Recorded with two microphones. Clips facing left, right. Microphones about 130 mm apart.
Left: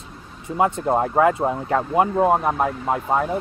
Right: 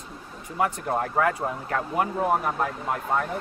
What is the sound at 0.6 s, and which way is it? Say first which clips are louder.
Speech: left 6 dB; 25° left (ahead or behind).